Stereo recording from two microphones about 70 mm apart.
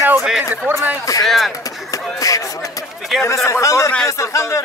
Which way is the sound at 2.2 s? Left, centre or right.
Left.